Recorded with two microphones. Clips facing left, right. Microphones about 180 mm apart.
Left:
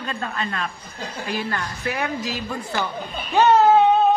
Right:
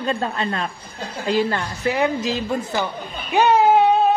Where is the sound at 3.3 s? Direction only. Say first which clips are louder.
Even; 10° right (ahead or behind).